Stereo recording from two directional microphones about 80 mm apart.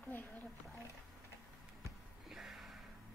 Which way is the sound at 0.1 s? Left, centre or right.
Left.